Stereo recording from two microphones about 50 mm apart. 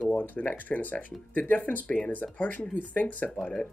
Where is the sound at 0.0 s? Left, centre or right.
Left.